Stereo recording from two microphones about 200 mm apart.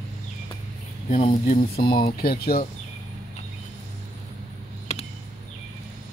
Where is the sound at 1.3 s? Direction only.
40° left (ahead or behind).